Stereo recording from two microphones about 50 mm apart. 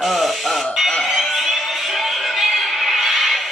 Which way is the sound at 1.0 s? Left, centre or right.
Centre.